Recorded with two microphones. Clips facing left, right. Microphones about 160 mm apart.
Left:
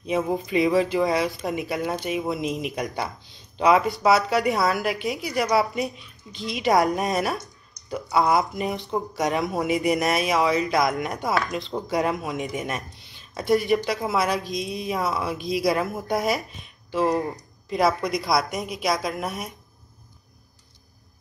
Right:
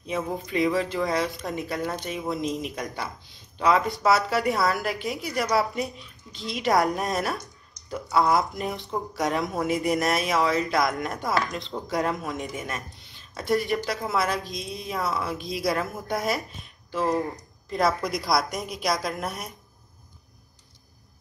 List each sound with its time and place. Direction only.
0.0 s speech: 15° left (ahead or behind)
3.8 s speech: centre (ahead or behind)
12.5 s speech: 20° left (ahead or behind)
13.3 s speech: centre (ahead or behind)